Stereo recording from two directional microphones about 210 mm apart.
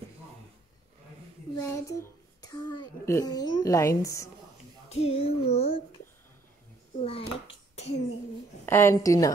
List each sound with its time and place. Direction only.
1.6 s a child's voice: 15° left (ahead or behind)
4.8 s speech: 30° left (ahead or behind)
7.0 s speech: 25° left (ahead or behind)
8.6 s a woman's voice: 10° left (ahead or behind)